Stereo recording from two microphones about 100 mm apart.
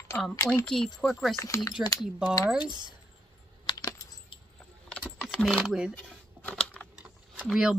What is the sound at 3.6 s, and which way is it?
Typing, 50° left (ahead or behind).